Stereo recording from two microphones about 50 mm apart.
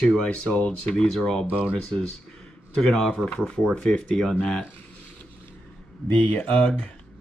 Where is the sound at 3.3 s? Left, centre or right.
Left.